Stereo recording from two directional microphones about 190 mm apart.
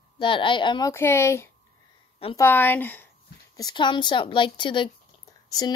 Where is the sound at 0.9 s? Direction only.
15° left (ahead or behind).